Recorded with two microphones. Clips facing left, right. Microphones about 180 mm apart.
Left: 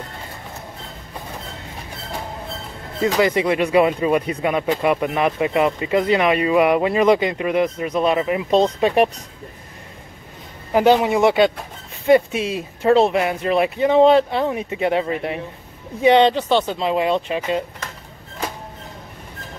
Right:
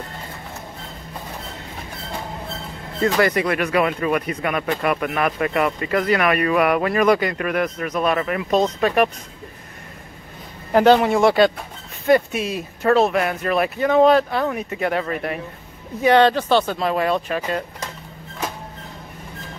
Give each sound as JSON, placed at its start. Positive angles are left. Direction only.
{"t": 3.3, "sound": "speech", "side_deg": 20}
{"t": 10.7, "sound": "speech", "side_deg": 10}